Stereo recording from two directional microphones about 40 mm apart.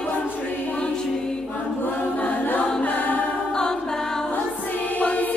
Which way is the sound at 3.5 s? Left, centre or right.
Centre.